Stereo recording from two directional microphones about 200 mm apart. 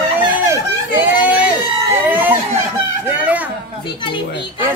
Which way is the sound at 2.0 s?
10° right (ahead or behind).